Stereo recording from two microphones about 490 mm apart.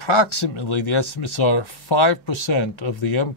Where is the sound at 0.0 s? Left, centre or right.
Left.